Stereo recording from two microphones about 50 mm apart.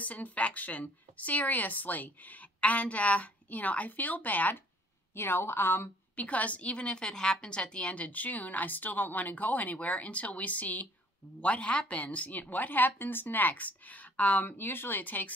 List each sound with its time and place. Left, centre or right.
0.0 s a woman's voice: left
5.1 s a woman's voice: left
6.1 s a woman's voice: left
7.9 s a woman's voice: left